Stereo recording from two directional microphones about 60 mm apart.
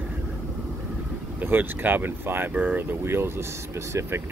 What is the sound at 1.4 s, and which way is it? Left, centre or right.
Speech, right.